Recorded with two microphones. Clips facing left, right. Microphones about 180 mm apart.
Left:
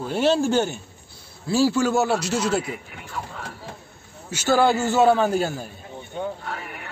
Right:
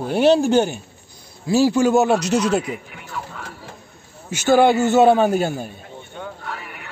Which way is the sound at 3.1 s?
40° left (ahead or behind).